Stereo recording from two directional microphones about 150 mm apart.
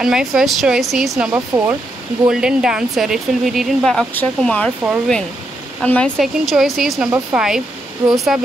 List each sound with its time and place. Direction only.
0.0 s speech: 5° right (ahead or behind)
1.3 s speech: 15° right (ahead or behind)
2.2 s speech: 5° right (ahead or behind)